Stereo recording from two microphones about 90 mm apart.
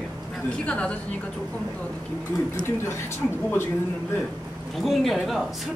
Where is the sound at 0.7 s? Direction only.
10° left (ahead or behind).